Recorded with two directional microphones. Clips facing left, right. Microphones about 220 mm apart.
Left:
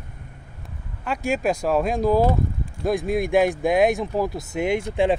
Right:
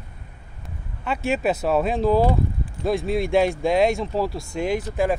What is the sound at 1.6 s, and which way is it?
Speech, 10° left (ahead or behind).